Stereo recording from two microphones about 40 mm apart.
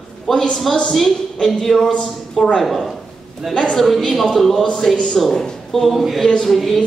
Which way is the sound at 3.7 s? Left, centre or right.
Centre.